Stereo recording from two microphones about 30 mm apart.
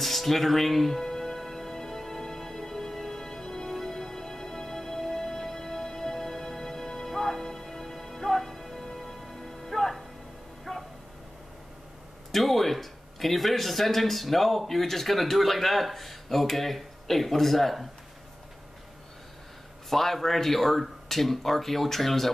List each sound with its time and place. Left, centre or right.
0.0 s speech: centre
1.0 s music: centre
10.7 s a sound: centre
12.3 s a sound: centre
14.7 s speech: centre
19.9 s speech: centre